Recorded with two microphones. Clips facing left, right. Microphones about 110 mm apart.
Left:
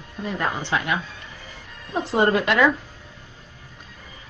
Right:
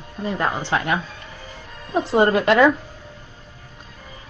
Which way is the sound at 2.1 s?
30° right (ahead or behind).